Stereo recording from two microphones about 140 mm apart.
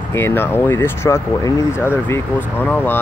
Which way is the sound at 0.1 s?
15° left (ahead or behind).